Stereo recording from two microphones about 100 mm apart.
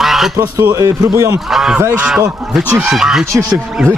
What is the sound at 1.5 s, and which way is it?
Speech, 5° right (ahead or behind).